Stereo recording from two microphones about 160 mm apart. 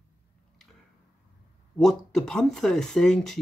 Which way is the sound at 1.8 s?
Centre (ahead or behind).